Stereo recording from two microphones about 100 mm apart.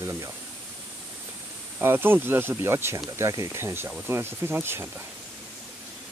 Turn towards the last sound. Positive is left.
turn(degrees=-25)  # may be behind; listen again after turning